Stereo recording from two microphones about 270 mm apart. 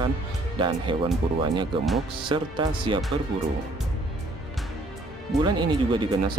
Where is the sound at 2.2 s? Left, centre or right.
Centre.